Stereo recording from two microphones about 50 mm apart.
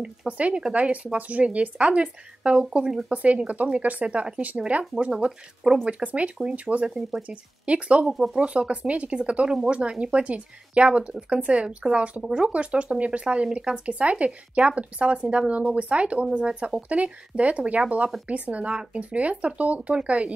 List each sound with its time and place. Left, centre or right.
0.3 s speech: right
5.1 s speech: centre
6.0 s speech: right
8.1 s speech: centre
8.4 s speech: right
12.5 s speech: right